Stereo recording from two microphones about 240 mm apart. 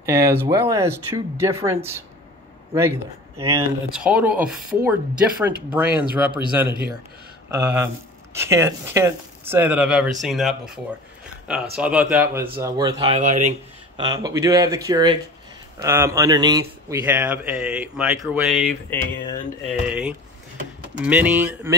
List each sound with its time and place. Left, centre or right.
0.0 s speech: centre
11.8 s speech: centre
13.2 s speech: right; by 21.7 s centre